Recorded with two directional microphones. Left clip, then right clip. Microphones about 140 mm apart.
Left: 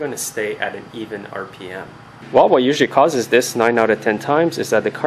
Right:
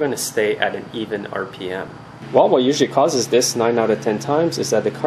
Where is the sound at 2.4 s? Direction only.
40° left (ahead or behind).